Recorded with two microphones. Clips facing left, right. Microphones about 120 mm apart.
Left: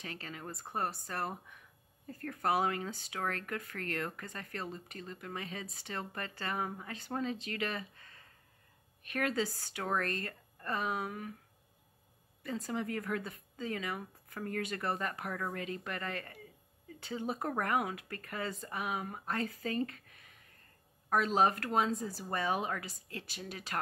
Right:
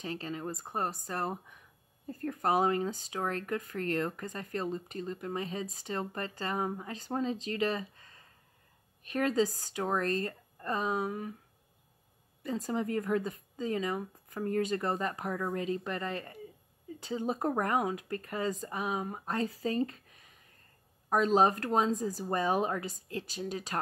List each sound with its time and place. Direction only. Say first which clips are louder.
0.0 s speech: right 7 dB; 30° right (ahead or behind)
0.6 s speech: left 2 dB; 20° right (ahead or behind)
2.0 s speech: right 3 dB; 30° right (ahead or behind)
9.0 s a woman's voice: right 5 dB; 30° right (ahead or behind)
12.5 s speech: right 4 dB; 35° right (ahead or behind)
21.3 s speech: right 5 dB; 30° right (ahead or behind)